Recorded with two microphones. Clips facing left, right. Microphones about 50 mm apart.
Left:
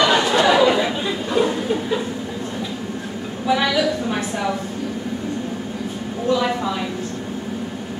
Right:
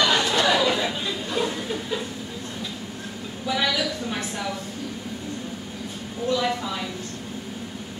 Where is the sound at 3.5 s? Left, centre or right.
Left.